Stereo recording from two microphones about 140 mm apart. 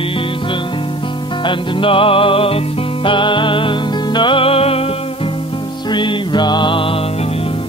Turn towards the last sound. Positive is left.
turn(degrees=35)  # may be behind; listen again after turning